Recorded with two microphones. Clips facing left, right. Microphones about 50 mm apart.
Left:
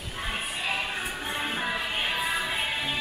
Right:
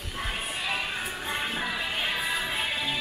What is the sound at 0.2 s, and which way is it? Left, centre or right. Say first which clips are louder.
Music: left 1 dB; centre.